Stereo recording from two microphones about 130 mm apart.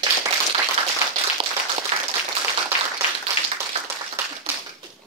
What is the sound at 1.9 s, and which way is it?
Applause, 50° right (ahead or behind).